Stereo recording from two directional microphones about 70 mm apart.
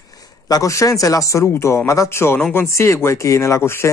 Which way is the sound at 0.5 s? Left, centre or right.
Left.